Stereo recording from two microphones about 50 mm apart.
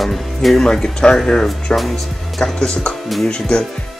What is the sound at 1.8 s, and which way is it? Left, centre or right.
Speech, centre.